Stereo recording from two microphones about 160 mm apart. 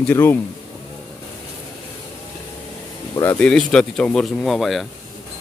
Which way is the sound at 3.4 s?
5° left (ahead or behind).